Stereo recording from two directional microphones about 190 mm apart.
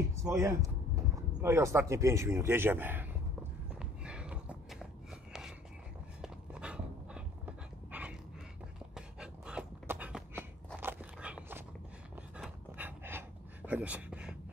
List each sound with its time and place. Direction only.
0.1 s a sound: 15° right (ahead or behind)
1.4 s speech: 15° right (ahead or behind)
3.7 s horse: 5° right (ahead or behind)
6.2 s dog: 5° right (ahead or behind)
8.9 s a sound: 5° right (ahead or behind)
10.8 s dog: 10° right (ahead or behind)
12.4 s pant: 10° right (ahead or behind)